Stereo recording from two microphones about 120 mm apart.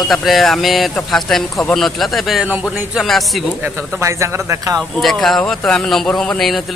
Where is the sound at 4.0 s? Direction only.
25° right (ahead or behind).